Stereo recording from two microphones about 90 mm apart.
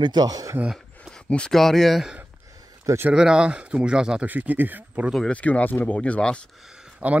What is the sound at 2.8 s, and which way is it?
Speech, 25° right (ahead or behind).